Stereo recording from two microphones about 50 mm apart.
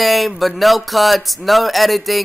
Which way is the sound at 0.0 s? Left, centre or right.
Centre.